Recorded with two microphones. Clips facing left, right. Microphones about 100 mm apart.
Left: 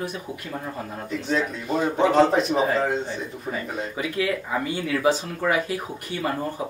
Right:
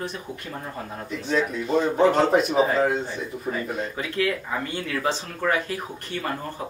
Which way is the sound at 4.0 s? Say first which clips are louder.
Left 2 dB; 10° left (ahead or behind).